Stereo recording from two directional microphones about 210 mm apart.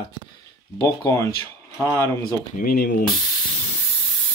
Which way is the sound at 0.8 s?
15° left (ahead or behind).